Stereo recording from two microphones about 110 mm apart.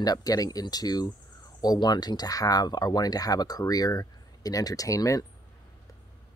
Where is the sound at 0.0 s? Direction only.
35° left (ahead or behind).